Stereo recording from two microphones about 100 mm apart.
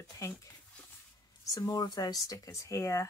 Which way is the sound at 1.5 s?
40° left (ahead or behind).